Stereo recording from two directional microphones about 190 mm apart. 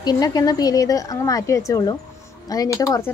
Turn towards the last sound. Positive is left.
turn(degrees=15)  # may be behind; listen again after turning